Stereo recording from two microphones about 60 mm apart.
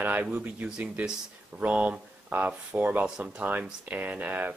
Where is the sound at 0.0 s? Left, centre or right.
Right.